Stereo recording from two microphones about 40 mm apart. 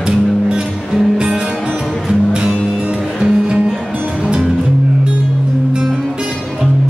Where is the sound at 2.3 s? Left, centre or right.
Right.